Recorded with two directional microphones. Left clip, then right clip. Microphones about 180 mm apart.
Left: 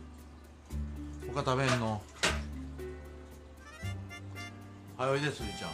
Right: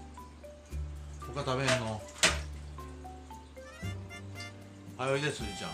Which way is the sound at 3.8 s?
Centre (ahead or behind).